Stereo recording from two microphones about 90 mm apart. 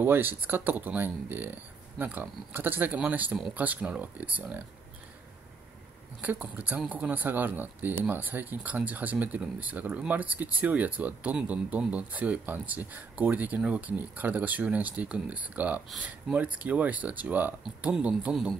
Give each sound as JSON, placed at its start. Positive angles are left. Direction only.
{"t": 0.0, "sound": "speech", "side_deg": -25}
{"t": 6.2, "sound": "speech", "side_deg": -20}